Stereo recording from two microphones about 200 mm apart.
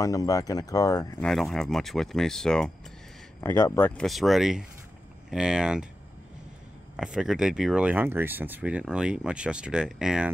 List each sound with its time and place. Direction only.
0.0 s speech: 15° left (ahead or behind)
1.2 s speech: centre (ahead or behind)
3.3 s speech: 15° left (ahead or behind); by 5.9 s 5° right (ahead or behind)
7.0 s speech: 5° right (ahead or behind)